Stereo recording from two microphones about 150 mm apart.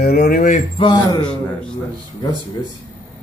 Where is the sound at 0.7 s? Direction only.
30° left (ahead or behind).